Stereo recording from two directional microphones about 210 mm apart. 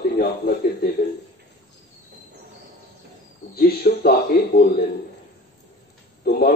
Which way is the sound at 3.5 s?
45° left (ahead or behind).